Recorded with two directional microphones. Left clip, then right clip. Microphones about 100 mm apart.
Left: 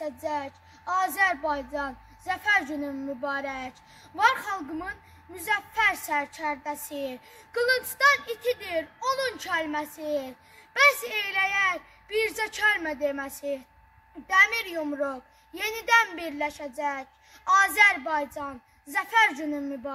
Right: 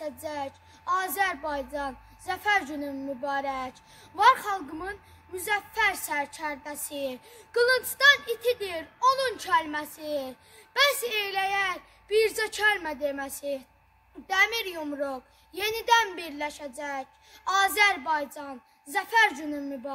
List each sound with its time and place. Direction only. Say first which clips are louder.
0.0 s a child's voice: left 3 dB; 40° right (ahead or behind)